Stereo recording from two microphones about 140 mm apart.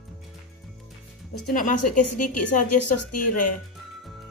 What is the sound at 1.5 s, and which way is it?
Speech, 70° left (ahead or behind).